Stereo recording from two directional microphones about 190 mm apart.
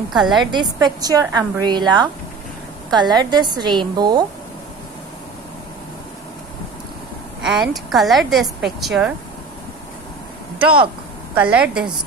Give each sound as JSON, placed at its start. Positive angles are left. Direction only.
{"t": 0.1, "sound": "a woman's voice", "side_deg": 0}
{"t": 0.5, "sound": "a woman's voice", "side_deg": -25}
{"t": 7.4, "sound": "a woman's voice", "side_deg": 0}
{"t": 11.3, "sound": "a woman's voice", "side_deg": -5}